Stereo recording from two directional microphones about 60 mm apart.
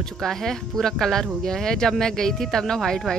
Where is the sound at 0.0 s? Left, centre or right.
Centre.